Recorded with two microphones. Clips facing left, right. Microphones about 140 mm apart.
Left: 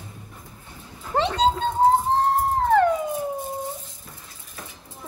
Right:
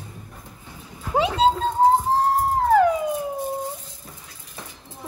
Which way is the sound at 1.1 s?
5° right (ahead or behind).